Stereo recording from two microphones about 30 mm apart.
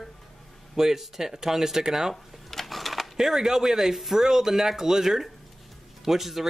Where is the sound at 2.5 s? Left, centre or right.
Centre.